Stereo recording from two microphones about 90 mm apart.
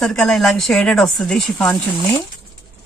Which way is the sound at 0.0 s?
5° left (ahead or behind).